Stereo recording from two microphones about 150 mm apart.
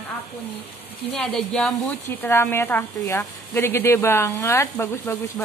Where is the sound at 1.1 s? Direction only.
5° left (ahead or behind).